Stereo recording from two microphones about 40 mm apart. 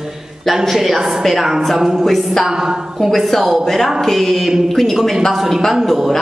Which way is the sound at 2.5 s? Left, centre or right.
Centre.